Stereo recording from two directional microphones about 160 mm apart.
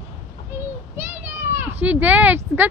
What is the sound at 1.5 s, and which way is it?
Speech, 15° right (ahead or behind).